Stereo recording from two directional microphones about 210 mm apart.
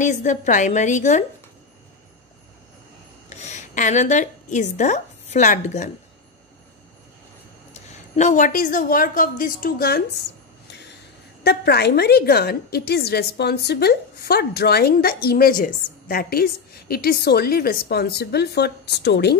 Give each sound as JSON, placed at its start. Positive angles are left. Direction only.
{"t": 0.0, "sound": "a woman's voice", "side_deg": 35}
{"t": 3.3, "sound": "a woman's voice", "side_deg": 35}
{"t": 7.7, "sound": "a woman's voice", "side_deg": 35}
{"t": 11.4, "sound": "a woman's voice", "side_deg": 50}